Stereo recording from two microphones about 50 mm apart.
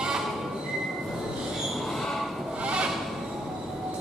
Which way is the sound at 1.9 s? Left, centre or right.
Centre.